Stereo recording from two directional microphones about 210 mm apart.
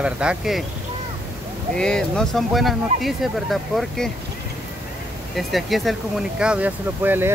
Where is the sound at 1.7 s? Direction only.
5° left (ahead or behind).